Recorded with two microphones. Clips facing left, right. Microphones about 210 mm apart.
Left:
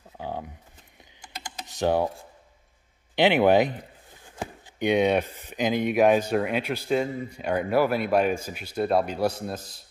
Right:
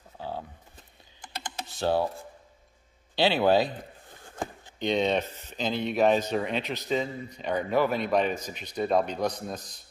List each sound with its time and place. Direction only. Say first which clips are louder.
1.4 s typing: left 3 dB; 15° left (ahead or behind)
3.2 s speech: left 3 dB; 20° left (ahead or behind)